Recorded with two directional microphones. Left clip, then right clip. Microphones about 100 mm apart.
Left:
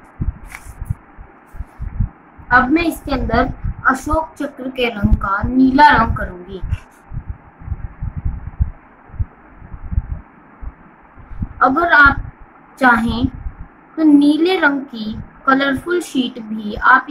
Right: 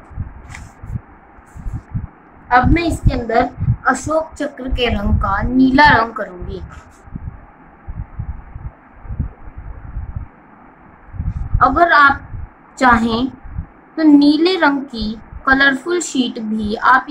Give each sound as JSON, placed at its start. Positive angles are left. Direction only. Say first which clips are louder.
{"t": 2.4, "sound": "a woman's voice", "louder": "left 1 dB", "side_deg": 0}
{"t": 4.6, "sound": "a woman's voice", "louder": "even", "side_deg": -25}
{"t": 5.2, "sound": "speech", "louder": "even", "side_deg": -10}
{"t": 11.5, "sound": "a woman's voice", "louder": "right 1 dB", "side_deg": -25}